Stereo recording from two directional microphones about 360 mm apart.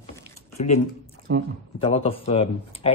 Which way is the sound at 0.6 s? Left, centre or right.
Centre.